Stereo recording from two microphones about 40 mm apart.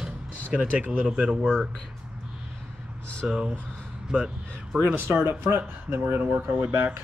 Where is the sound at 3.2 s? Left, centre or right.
Centre.